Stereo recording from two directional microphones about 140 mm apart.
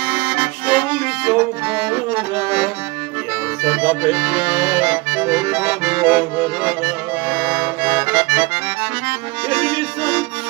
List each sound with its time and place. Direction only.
0.1 s accordion: 15° right (ahead or behind)
2.3 s accordion: 40° right (ahead or behind)
3.6 s accordion: 10° right (ahead or behind)
4.4 s accordion: 35° right (ahead or behind)
4.7 s accordion: 5° right (ahead or behind)
9.5 s music: 10° right (ahead or behind)